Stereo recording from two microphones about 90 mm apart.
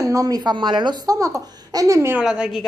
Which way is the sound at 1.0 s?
40° right (ahead or behind).